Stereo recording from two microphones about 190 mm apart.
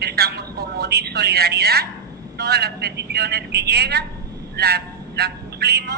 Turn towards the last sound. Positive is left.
turn(degrees=-60)  # may be behind; listen again after turning